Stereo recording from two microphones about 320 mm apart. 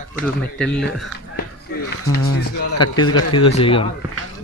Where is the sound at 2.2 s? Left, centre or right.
Left.